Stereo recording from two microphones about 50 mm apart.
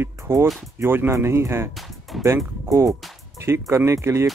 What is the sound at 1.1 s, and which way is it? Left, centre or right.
Speech, right.